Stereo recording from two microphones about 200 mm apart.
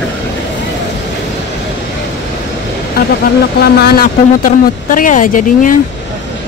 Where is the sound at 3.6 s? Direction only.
50° left (ahead or behind).